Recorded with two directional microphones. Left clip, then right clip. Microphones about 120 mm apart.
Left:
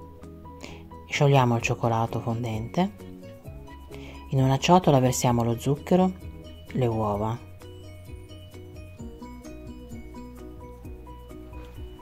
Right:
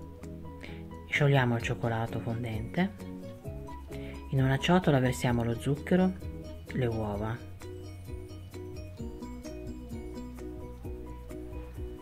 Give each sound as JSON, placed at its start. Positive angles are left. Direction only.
{"t": 1.1, "sound": "speech", "side_deg": 40}
{"t": 4.0, "sound": "speech", "side_deg": 40}